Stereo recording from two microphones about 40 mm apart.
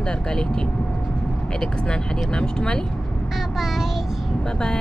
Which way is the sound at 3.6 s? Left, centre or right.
Centre.